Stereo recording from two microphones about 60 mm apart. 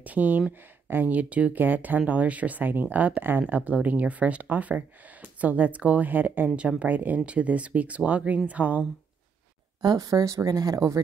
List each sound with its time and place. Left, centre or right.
0.0 s speech: right
9.8 s speech: right